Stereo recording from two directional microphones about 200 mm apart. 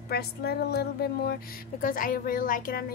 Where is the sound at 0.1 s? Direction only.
55° left (ahead or behind).